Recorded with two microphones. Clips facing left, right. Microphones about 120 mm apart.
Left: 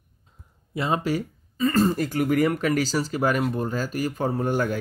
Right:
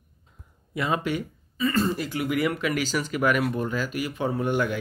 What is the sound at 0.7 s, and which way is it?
Speech, 30° left (ahead or behind).